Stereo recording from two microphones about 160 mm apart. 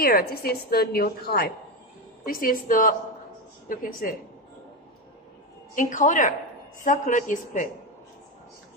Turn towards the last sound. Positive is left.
turn(degrees=50)  # may be behind; listen again after turning